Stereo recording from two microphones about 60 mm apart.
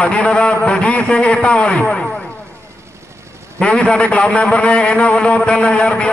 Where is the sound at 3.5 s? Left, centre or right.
Centre.